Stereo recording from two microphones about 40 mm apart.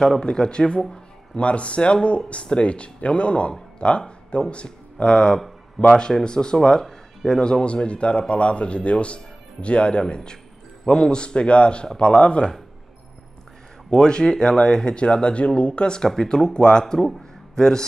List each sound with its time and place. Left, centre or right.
0.2 s speech: left
13.8 s speech: centre
16.0 s speech: centre